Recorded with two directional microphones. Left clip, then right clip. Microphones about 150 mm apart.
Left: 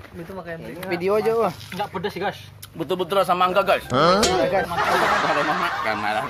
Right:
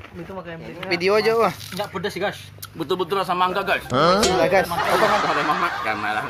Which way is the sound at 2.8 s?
30° left (ahead or behind).